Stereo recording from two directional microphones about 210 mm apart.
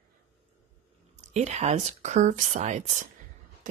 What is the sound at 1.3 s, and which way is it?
A woman's voice, 30° right (ahead or behind).